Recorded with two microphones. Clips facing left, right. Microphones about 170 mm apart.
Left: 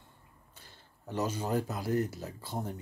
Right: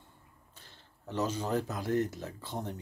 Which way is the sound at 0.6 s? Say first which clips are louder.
Left 1 dB; 10° left (ahead or behind).